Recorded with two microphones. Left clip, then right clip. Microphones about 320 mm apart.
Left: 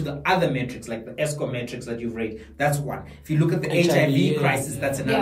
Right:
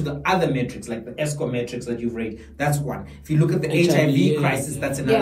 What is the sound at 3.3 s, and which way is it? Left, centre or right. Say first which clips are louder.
Speech: right 1 dB; centre.